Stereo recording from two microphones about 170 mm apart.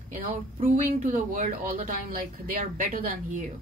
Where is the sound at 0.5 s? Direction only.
45° right (ahead or behind).